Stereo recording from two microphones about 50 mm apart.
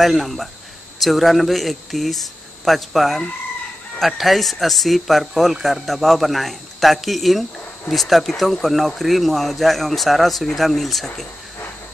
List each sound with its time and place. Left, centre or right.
0.0 s a man's voice: centre